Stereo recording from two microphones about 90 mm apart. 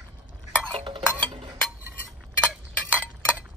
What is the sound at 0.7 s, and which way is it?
Stir, 70° right (ahead or behind).